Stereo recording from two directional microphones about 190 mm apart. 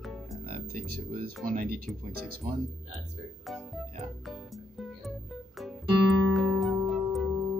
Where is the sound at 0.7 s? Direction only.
50° right (ahead or behind).